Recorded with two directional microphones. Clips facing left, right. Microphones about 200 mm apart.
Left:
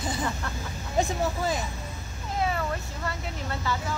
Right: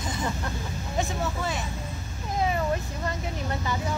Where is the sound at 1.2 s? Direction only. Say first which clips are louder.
Left 3 dB; 35° left (ahead or behind).